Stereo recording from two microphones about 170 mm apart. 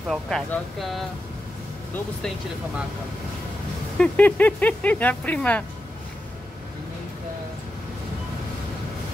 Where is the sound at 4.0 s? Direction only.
10° left (ahead or behind).